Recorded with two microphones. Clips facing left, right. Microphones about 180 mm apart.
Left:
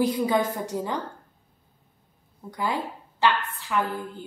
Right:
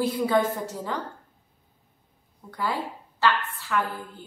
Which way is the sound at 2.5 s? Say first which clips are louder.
Left 1 dB; 15° left (ahead or behind).